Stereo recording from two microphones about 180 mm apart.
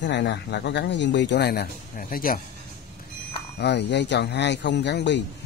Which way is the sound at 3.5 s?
70° left (ahead or behind).